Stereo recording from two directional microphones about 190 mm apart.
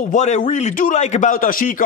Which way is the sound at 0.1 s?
40° left (ahead or behind).